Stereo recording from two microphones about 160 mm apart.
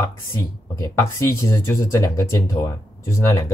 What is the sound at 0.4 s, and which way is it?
Speech, 20° left (ahead or behind).